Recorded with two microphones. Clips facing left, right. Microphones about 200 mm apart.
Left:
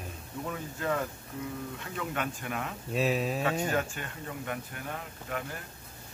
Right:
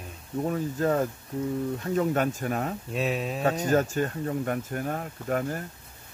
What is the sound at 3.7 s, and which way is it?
Speech, 40° right (ahead or behind).